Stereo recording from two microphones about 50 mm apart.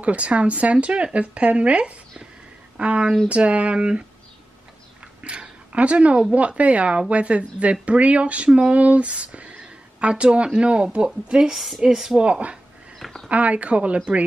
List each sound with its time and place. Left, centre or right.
0.0 s speech: right
5.2 s a sound: right
6.3 s speech: right
11.5 s a woman's voice: centre
12.2 s speech: right